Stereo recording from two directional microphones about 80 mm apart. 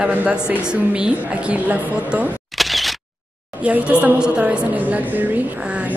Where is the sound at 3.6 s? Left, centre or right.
Centre.